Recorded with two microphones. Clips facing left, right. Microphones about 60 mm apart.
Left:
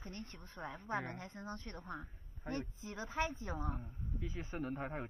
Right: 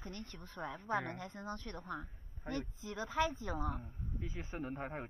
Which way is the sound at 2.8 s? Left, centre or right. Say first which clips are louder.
Right 6 dB; right.